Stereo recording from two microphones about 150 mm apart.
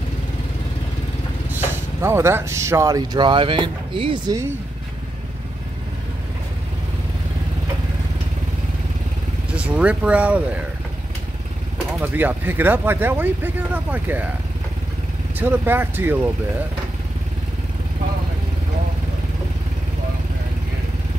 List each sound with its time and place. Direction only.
2.0 s speech: 15° right (ahead or behind); by 4.4 s 35° right (ahead or behind)
9.6 s speech: 10° right (ahead or behind)
12.0 s speech: 10° right (ahead or behind)
15.3 s speech: 15° right (ahead or behind)